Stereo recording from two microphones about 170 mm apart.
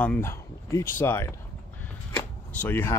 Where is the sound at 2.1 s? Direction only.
15° left (ahead or behind).